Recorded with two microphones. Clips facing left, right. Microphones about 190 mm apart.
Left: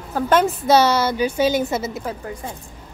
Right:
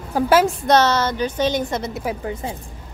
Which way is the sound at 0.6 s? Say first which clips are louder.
Left 1 dB; 10° left (ahead or behind).